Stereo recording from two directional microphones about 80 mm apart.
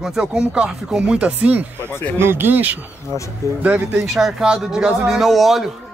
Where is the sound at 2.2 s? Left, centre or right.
Right.